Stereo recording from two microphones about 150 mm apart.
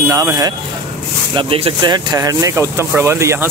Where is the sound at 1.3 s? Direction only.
35° right (ahead or behind); by 3.5 s 15° right (ahead or behind).